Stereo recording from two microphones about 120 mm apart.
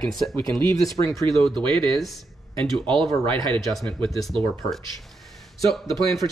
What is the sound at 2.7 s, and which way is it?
Speech, 45° right (ahead or behind).